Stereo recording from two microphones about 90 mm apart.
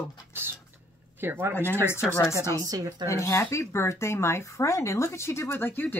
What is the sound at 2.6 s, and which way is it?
Speech, 45° right (ahead or behind).